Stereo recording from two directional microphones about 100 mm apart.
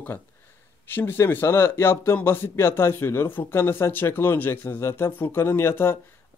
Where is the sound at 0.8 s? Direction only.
20° left (ahead or behind).